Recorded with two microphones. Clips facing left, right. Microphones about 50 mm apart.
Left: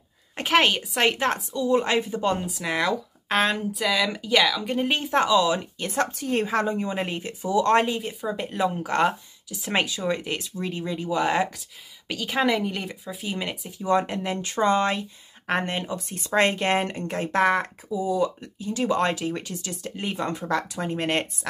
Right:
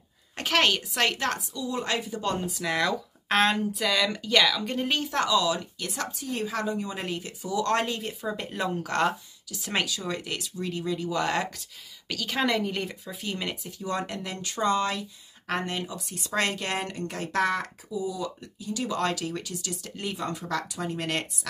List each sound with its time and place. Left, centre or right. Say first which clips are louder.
0.4 s a woman's voice: left 3 dB; centre
2.2 s speech: left 3 dB; centre
4.8 s a woman's voice: left 5 dB; left
6.1 s speech: left 6 dB; left
8.0 s speech: left 3 dB; centre; by 21.3 s left